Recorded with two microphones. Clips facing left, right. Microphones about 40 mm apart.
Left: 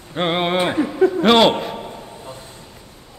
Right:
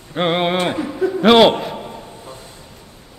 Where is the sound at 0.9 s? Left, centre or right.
Centre.